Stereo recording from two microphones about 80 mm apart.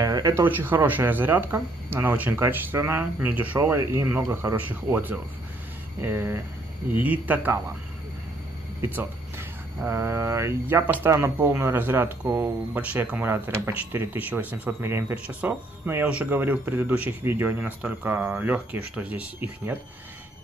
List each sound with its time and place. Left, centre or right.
0.0 s a sound: right
0.4 s speech: right
3.7 s mantra: right
4.6 s speech: right
5.9 s mantra: right
6.9 s speech: right
8.8 s music: right
9.8 s mantra: right
11.1 s speech: right
12.7 s speech: right